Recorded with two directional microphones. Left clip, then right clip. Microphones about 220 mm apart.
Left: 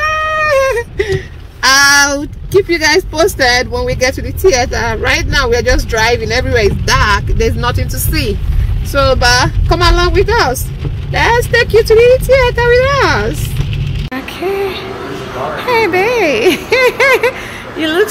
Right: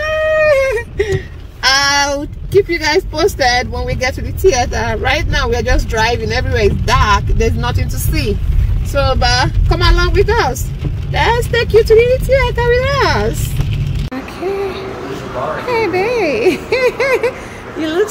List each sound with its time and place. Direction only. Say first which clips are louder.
0.0 s cat: even; centre (ahead or behind)
1.6 s a sound: left 5 dB; 5° left (ahead or behind)
3.2 s speech: left 3 dB; 5° left (ahead or behind)
14.1 s speech: left 3 dB; centre (ahead or behind)